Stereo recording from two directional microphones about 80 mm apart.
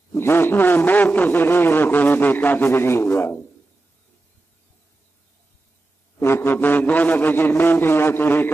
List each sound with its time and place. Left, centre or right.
0.1 s a man's voice: left
6.1 s a man's voice: left